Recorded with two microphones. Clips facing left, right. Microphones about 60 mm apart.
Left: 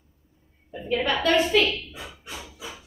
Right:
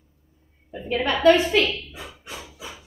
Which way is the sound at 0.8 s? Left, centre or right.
Centre.